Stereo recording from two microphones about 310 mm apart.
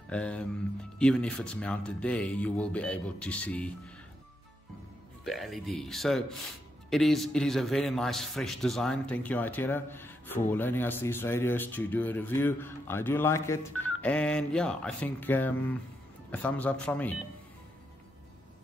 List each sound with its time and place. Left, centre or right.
0.1 s a man's voice: centre
5.2 s a man's voice: centre